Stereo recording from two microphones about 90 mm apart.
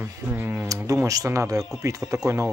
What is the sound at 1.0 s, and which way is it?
Speech, 40° right (ahead or behind).